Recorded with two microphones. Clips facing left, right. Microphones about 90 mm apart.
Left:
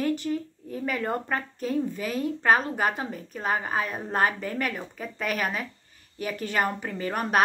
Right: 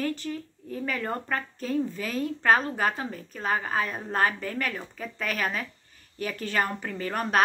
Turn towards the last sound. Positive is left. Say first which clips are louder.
# left 1 dB
turn(degrees=15)  # may be behind; listen again after turning